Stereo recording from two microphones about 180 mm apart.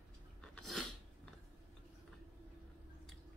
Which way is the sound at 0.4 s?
Centre (ahead or behind).